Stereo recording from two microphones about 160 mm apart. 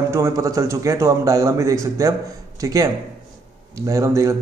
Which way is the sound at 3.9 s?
20° right (ahead or behind).